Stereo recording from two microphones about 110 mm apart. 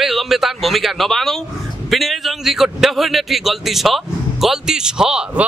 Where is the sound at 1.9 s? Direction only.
Centre (ahead or behind).